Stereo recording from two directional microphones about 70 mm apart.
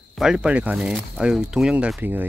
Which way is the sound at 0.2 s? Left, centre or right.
Centre.